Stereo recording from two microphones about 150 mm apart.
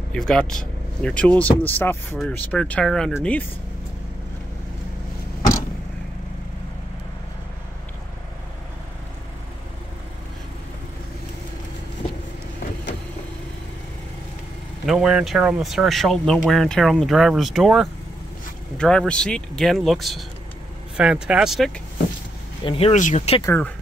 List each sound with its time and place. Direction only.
0.1 s speech: 5° left (ahead or behind)
14.9 s speech: 5° right (ahead or behind)
22.7 s speech: 40° left (ahead or behind)
22.9 s speech: 50° left (ahead or behind)
23.4 s speech: 10° left (ahead or behind)